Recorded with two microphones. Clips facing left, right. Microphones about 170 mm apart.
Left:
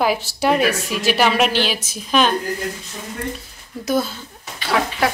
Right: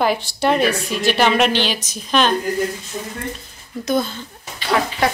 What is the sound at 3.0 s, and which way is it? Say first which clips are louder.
Speech: right 5 dB; 35° right (ahead or behind).